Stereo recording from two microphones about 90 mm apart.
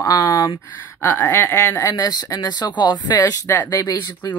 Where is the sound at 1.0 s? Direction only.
25° left (ahead or behind); by 3.3 s 45° left (ahead or behind).